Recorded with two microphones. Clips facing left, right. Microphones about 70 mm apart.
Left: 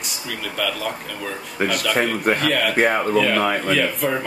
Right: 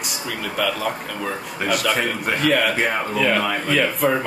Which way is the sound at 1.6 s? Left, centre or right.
Left.